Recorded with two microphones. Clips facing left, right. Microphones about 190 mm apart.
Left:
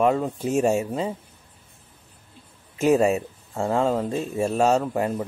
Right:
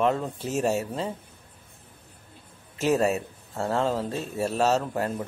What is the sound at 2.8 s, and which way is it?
Speech, 5° left (ahead or behind).